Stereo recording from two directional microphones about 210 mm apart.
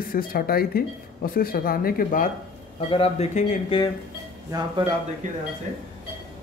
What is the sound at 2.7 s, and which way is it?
Speech, 25° left (ahead or behind).